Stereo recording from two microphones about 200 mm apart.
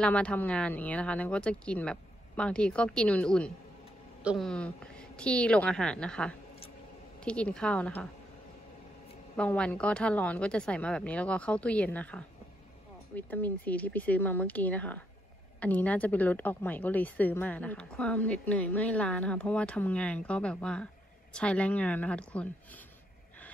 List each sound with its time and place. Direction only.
0.0 s speech: 5° left (ahead or behind)
9.4 s a woman's voice: 5° left (ahead or behind)